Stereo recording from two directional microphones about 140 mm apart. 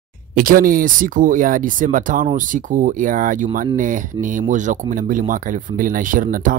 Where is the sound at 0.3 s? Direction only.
85° right.